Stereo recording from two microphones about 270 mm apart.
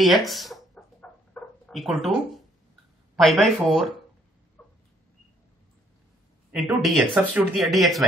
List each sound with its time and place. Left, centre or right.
0.0 s speech: centre
1.3 s dog: centre
3.2 s speech: centre
4.6 s a sound: centre
6.5 s speech: centre